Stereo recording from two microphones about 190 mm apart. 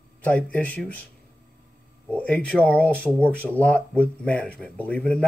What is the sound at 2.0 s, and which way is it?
Speech, 10° left (ahead or behind).